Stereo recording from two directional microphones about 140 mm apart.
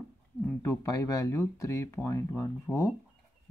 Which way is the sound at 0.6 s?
25° left (ahead or behind).